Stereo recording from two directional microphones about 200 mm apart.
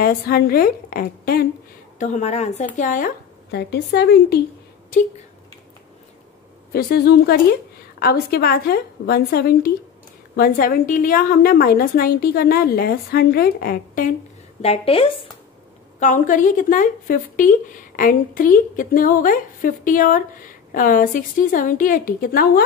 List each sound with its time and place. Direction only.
0.0 s a woman's voice: 50° left (ahead or behind)
2.0 s speech: 35° left (ahead or behind)
3.5 s a woman's voice: 55° left (ahead or behind)
6.7 s a woman's voice: 50° left (ahead or behind)
14.6 s a woman's voice: 30° left (ahead or behind)
16.0 s a woman's voice: 40° left (ahead or behind)